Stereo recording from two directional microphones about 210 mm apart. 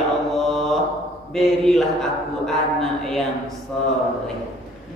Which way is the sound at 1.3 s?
Centre (ahead or behind).